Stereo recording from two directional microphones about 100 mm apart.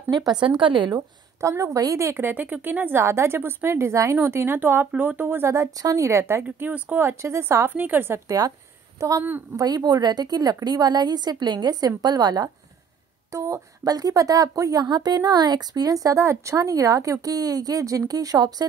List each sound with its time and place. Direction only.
0.1 s a woman's voice: 45° right (ahead or behind)
1.4 s a woman's voice: 30° right (ahead or behind)
6.4 s a woman's voice: 15° right (ahead or behind)
8.3 s speech: 35° right (ahead or behind)
9.2 s a woman's voice: 20° right (ahead or behind)
9.6 s a woman's voice: 40° right (ahead or behind)
13.3 s speech: 35° right (ahead or behind)